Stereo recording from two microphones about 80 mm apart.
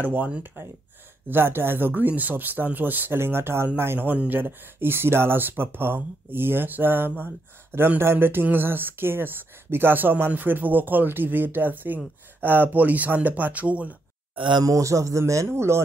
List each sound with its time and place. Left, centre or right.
0.0 s speech: right
14.3 s speech: right
14.6 s speech: right